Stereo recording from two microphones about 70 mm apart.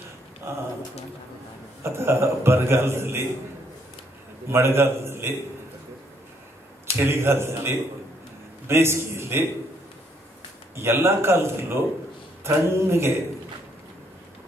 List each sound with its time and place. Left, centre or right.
0.5 s speech: right
1.8 s a man's voice: right
4.5 s a man's voice: right
7.0 s a man's voice: right
10.8 s a man's voice: right